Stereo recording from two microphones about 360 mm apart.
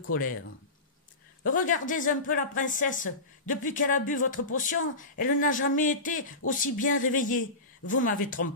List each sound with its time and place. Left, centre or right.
0.0 s speech: left
1.4 s speech: left